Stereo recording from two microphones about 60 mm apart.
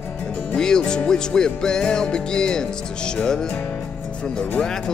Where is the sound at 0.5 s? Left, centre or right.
Centre.